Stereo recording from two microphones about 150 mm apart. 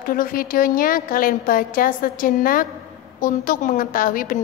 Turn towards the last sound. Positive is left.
turn(degrees=65)  # may be behind; listen again after turning